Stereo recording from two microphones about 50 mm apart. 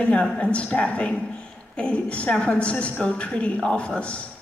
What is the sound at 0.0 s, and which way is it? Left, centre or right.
A woman's voice, left.